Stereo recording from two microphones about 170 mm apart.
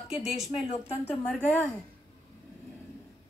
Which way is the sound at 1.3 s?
5° left (ahead or behind).